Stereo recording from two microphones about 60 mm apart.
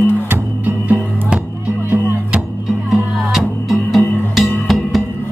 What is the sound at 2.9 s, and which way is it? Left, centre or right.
Music, centre.